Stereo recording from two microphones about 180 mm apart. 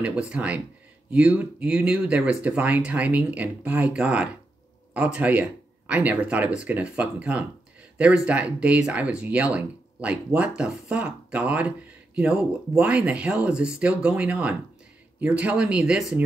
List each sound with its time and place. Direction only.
0.0 s speech: 5° right (ahead or behind)